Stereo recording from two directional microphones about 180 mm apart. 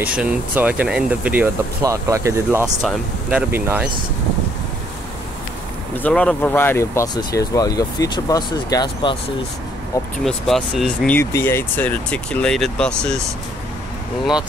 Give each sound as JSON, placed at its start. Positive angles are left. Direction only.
{"t": 0.0, "sound": "speech", "side_deg": -5}
{"t": 5.9, "sound": "speech", "side_deg": 5}
{"t": 10.2, "sound": "speech", "side_deg": 0}
{"t": 11.1, "sound": "speech", "side_deg": 15}